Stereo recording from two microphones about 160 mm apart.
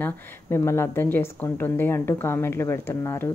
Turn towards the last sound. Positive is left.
turn(degrees=15)  # may be behind; listen again after turning